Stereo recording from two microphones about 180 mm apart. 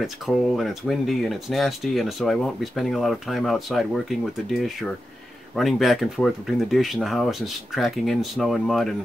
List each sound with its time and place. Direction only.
0.0 s speech: centre (ahead or behind)